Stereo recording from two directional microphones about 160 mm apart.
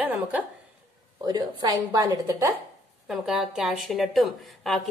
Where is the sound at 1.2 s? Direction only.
25° right (ahead or behind).